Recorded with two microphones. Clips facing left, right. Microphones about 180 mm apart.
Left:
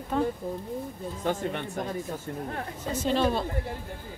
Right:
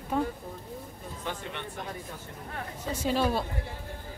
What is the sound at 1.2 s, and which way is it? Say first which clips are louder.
Speech: left 8 dB; 45° left (ahead or behind).